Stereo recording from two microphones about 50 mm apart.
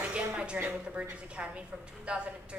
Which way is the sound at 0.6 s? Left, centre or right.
Right.